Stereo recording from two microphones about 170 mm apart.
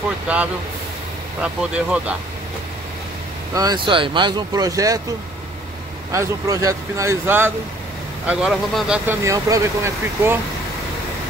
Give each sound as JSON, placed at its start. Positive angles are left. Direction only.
{"t": 1.4, "sound": "speech", "side_deg": -5}
{"t": 3.5, "sound": "speech", "side_deg": -25}
{"t": 6.1, "sound": "speech", "side_deg": -20}